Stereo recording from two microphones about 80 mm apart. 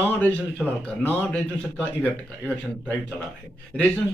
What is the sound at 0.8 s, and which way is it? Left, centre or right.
Speech, centre.